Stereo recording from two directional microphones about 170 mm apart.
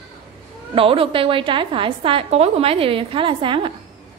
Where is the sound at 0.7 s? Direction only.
30° right (ahead or behind).